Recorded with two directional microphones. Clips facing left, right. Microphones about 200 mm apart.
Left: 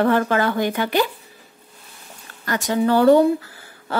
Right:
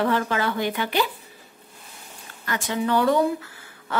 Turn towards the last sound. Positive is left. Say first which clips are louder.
# left 7 dB
turn(degrees=35)  # may be behind; listen again after turning